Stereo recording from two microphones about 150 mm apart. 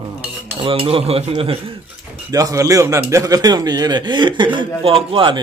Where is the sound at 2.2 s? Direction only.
20° right (ahead or behind).